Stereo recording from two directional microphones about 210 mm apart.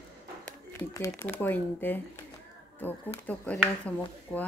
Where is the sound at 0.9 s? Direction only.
15° left (ahead or behind).